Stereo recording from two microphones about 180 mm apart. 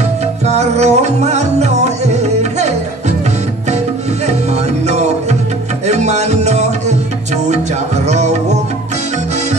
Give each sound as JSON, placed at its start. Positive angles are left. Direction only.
{"t": 0.5, "sound": "music", "side_deg": -40}
{"t": 5.9, "sound": "music", "side_deg": -40}
{"t": 8.1, "sound": "music", "side_deg": -40}